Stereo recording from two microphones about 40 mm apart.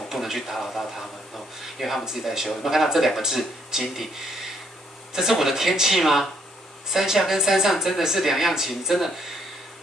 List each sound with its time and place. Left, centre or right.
0.1 s speech: centre
2.0 s speech: centre
5.4 s speech: centre